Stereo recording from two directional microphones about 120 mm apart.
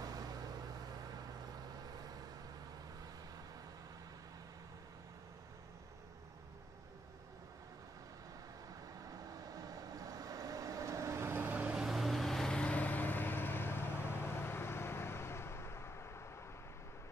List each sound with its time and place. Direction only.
0.0 s vehicle: 30° right (ahead or behind)
9.0 s vehicle: 30° right (ahead or behind); by 16.3 s 20° left (ahead or behind)